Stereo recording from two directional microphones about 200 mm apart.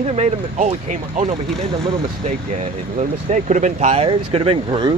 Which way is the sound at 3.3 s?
35° right (ahead or behind).